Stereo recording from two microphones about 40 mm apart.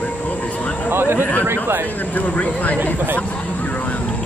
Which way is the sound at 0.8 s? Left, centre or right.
Right.